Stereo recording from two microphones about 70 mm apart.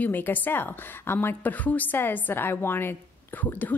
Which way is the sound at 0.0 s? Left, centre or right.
Left.